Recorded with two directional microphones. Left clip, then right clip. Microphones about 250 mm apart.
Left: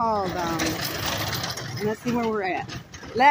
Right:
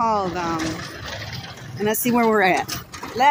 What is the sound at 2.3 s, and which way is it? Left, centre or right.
Speech, right.